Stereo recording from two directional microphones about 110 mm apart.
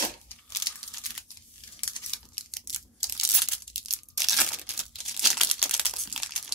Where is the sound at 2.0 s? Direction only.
45° left (ahead or behind).